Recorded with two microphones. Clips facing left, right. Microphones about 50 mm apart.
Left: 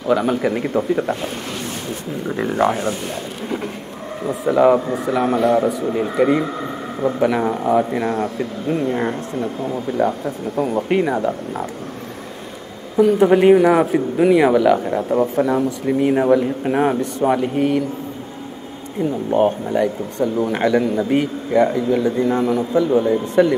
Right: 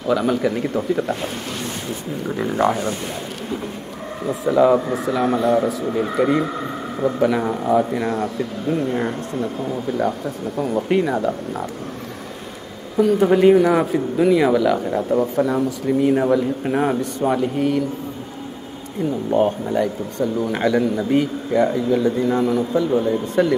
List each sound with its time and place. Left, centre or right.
0.0 s speech: centre
2.2 s speech: centre
2.7 s speech: left
4.5 s speech: left
4.8 s a man's voice: centre
5.1 s speech: centre
5.6 s a man's voice: centre
8.4 s speech: left
13.2 s speech: centre
19.7 s speech: centre